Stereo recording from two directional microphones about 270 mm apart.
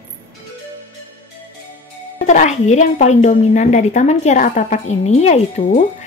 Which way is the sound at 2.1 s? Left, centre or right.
Left.